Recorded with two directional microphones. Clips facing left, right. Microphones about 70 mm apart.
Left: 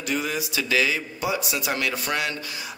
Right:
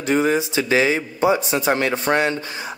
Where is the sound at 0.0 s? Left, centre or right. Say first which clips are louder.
Right 9 dB; right.